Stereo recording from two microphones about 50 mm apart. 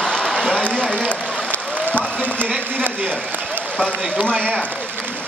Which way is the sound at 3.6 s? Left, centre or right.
Left.